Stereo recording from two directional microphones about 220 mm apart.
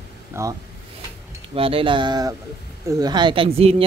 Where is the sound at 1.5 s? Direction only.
25° right (ahead or behind).